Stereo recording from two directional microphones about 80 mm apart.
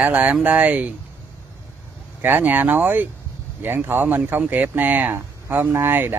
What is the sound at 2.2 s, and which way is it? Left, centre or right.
Speech, right.